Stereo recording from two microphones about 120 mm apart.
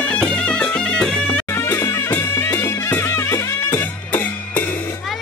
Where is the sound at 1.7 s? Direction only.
20° left (ahead or behind).